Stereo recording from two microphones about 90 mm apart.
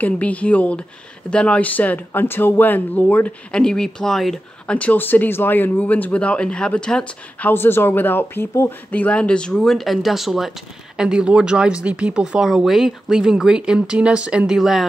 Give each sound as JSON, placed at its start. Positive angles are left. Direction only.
{"t": 0.0, "sound": "speech", "side_deg": 15}
{"t": 4.7, "sound": "speech", "side_deg": 20}